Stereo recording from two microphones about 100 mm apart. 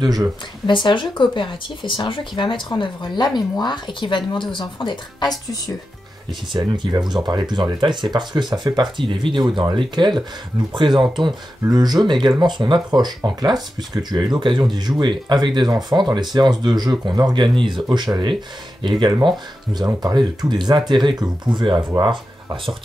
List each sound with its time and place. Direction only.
0.0 s speech: 40° right (ahead or behind)
0.7 s speech: 55° left (ahead or behind)
6.5 s speech: 45° right (ahead or behind)